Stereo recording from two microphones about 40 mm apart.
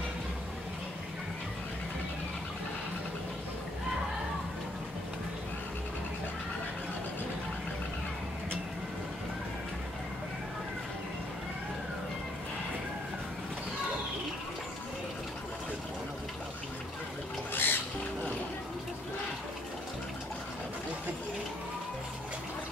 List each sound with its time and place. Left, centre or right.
17.5 s music: left